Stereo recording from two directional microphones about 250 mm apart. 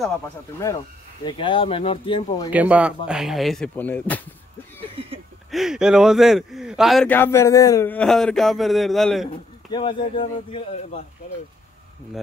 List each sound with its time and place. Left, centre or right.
1.2 s speech: centre
2.5 s speech: centre
5.5 s speech: centre
9.7 s speech: centre